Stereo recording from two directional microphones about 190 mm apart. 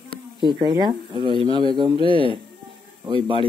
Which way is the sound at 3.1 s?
25° right (ahead or behind).